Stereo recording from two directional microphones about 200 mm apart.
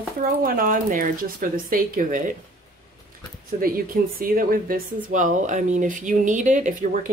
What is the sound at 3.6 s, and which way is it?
Speech, 45° right (ahead or behind).